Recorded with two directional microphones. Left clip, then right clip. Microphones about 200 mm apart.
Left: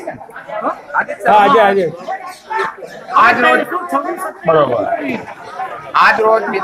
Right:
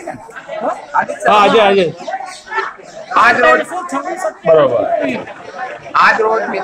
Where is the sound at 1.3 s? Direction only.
40° right (ahead or behind).